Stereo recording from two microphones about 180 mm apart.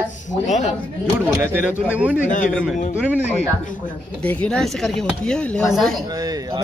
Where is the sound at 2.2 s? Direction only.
45° left (ahead or behind).